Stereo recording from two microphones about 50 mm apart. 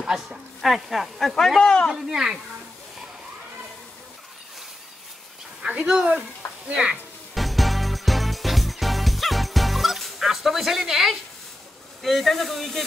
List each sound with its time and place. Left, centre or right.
0.0 s speech: centre
0.6 s speech: centre
1.6 s speech: centre
1.9 s speech: centre
5.9 s speech: centre
7.3 s music: centre
12.0 s speech: centre